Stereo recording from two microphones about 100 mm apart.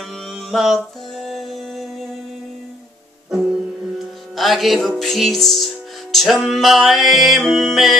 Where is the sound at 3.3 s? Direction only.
5° right (ahead or behind).